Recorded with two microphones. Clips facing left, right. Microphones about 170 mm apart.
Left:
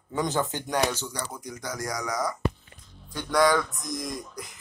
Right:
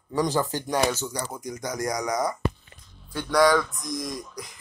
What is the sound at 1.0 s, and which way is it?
Speech, 15° right (ahead or behind).